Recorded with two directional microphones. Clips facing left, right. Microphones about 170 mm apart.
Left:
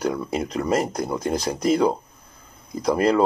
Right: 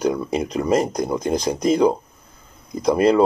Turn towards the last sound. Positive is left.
turn(degrees=-15)  # may be behind; listen again after turning